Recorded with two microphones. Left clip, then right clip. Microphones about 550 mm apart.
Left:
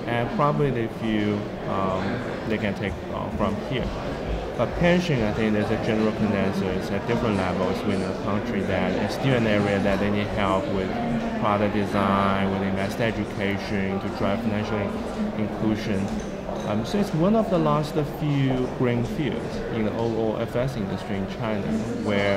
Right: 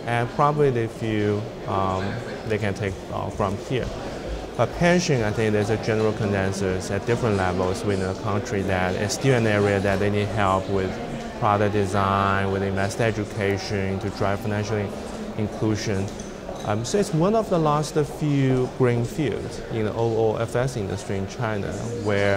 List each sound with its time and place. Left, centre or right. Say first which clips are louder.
0.1 s speech: right 2 dB; right
2.5 s speech: right 3 dB; right
4.6 s speech: right 2 dB; right
8.7 s speech: even; right
16.9 s speech: right 2 dB; right